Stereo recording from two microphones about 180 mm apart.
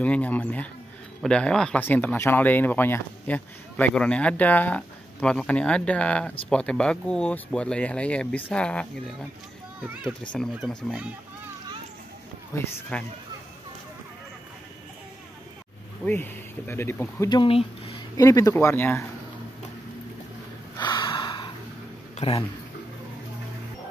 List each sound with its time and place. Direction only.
0.0 s speech: 10° left (ahead or behind)
10.3 s speech: 5° left (ahead or behind)
12.5 s speech: 15° left (ahead or behind)
16.1 s speech: 10° left (ahead or behind)
20.7 s gasp: 25° left (ahead or behind)
22.1 s a sound: 30° left (ahead or behind)